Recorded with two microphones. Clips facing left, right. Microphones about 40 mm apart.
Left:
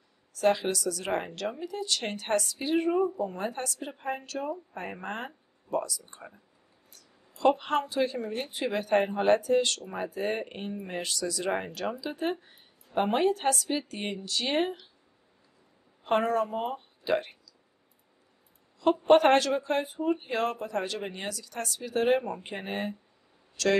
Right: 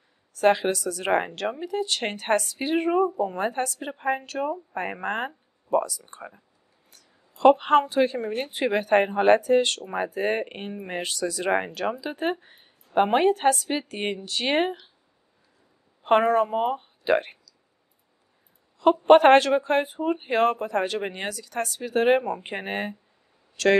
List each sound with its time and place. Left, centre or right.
0.4 s speech: right
6.9 s a sound: right
8.4 s speech: right
16.0 s speech: right
18.8 s speech: right